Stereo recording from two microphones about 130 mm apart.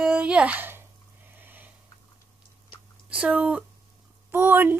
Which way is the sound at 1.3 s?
15° right (ahead or behind).